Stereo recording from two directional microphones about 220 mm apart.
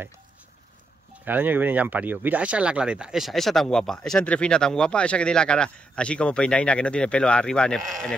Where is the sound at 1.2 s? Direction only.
10° right (ahead or behind).